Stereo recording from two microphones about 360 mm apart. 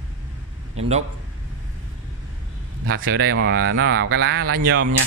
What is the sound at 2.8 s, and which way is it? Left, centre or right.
Speech, right.